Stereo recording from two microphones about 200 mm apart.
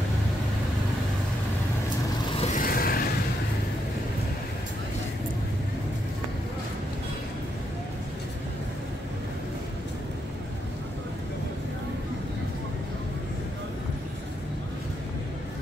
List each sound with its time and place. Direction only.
2.3 s vehicle: 35° left (ahead or behind)